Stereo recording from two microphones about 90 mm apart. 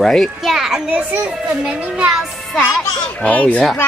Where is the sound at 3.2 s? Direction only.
15° left (ahead or behind).